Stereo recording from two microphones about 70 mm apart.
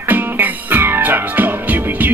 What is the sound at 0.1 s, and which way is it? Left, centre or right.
Music, right.